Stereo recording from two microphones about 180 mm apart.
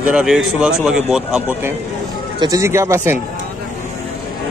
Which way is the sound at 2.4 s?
20° right (ahead or behind).